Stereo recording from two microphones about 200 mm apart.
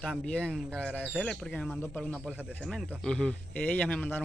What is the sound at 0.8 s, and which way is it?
Speech, 5° right (ahead or behind).